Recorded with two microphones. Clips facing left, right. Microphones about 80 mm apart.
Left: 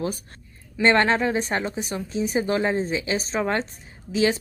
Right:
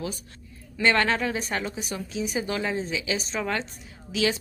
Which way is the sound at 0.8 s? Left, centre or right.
Left.